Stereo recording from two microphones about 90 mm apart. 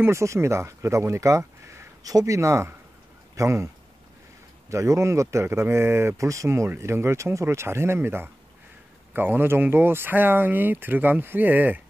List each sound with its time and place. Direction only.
0.0 s speech: 30° right (ahead or behind)